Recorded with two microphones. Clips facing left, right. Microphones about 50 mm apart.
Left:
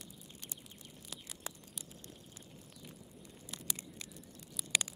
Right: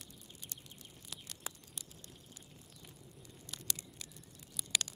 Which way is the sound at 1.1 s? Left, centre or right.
Centre.